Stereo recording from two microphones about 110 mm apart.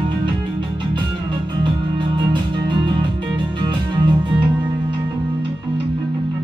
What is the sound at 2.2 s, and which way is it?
Music, 45° right (ahead or behind).